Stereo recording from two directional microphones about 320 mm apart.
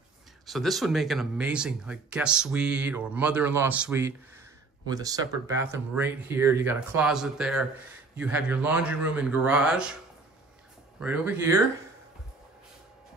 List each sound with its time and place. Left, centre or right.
0.5 s speech: centre
11.0 s speech: centre